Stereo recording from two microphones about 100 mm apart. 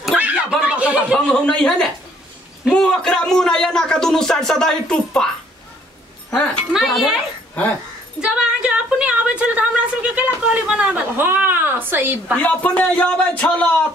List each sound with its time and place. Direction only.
0.0 s a sound: 15° right (ahead or behind)
1.3 s a man's voice: 10° left (ahead or behind)
6.3 s a man's voice: 15° left (ahead or behind)
6.7 s speech: 5° right (ahead or behind)
8.2 s a sound: 10° right (ahead or behind)
12.4 s a man's voice: 15° left (ahead or behind)